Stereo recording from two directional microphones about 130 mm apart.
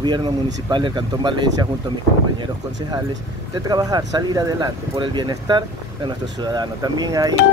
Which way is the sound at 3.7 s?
30° right (ahead or behind).